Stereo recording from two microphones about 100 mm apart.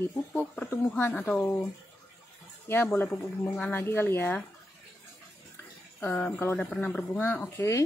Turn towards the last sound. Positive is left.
turn(degrees=25)  # may be behind; listen again after turning